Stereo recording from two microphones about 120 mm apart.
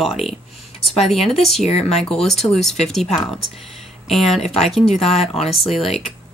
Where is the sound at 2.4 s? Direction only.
Centre (ahead or behind).